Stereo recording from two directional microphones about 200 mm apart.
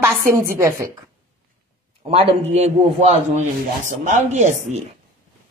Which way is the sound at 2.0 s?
30° right (ahead or behind).